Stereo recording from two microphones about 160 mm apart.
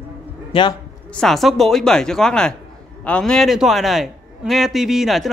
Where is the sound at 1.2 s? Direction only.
Centre (ahead or behind).